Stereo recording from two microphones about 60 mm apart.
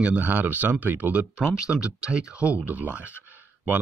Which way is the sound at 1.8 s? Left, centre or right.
Centre.